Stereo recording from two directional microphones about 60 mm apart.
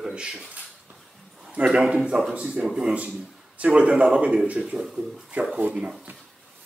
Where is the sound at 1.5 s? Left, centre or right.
Centre.